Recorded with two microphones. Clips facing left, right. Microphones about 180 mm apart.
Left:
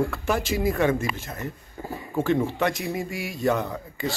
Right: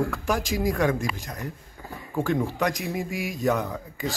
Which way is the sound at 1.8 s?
40° left (ahead or behind).